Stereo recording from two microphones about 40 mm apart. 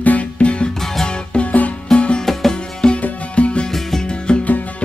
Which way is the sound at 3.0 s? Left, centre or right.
Left.